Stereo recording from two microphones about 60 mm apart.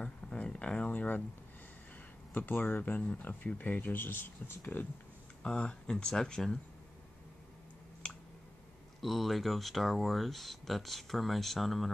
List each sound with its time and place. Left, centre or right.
0.0 s speech: centre
2.3 s speech: left
5.4 s speech: centre
9.0 s speech: centre